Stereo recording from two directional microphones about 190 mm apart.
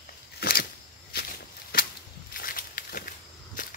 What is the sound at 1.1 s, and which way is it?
Walk, 55° left (ahead or behind).